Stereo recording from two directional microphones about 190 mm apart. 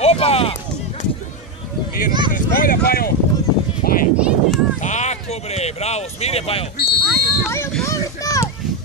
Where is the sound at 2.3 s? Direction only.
50° left (ahead or behind).